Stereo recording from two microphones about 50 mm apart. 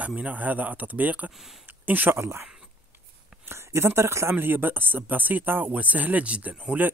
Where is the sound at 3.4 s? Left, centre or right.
Right.